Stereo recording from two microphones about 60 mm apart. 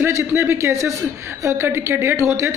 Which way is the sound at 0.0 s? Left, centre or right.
Right.